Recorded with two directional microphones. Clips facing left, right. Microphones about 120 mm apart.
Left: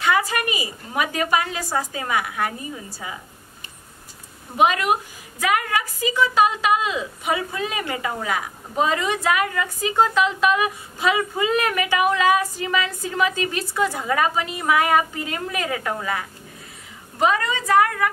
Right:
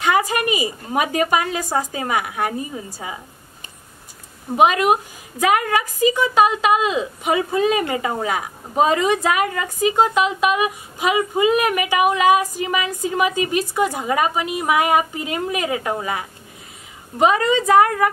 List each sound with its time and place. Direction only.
0.0 s a woman's voice: 20° right (ahead or behind)
4.6 s a woman's voice: 20° right (ahead or behind)